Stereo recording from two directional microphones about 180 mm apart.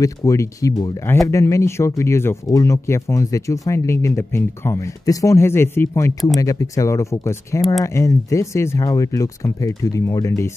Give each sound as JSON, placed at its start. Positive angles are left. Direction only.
{"t": 0.0, "sound": "speech", "side_deg": 15}